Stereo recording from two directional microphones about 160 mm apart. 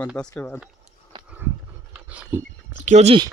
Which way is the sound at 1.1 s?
25° right (ahead or behind).